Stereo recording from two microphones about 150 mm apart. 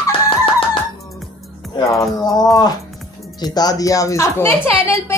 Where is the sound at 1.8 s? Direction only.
25° left (ahead or behind).